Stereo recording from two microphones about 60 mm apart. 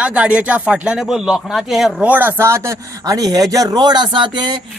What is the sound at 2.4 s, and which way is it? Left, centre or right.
Speech, right.